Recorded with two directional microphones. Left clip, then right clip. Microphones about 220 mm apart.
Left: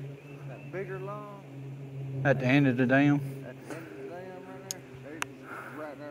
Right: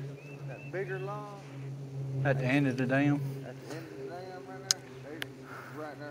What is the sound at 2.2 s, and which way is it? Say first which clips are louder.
Speech: left 4 dB; 50° left (ahead or behind).